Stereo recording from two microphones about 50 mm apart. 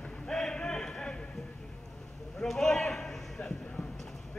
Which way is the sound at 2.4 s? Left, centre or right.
Centre.